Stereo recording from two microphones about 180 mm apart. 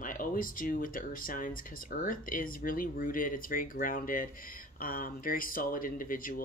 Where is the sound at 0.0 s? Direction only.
50° left (ahead or behind).